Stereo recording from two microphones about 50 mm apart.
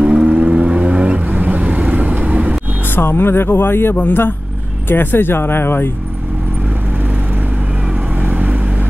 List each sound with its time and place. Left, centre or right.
0.0 s vehicle: right
0.3 s vehicle: right
3.0 s speech: left
8.3 s vehicle: right